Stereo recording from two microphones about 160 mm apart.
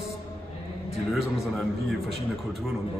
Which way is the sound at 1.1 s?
Centre (ahead or behind).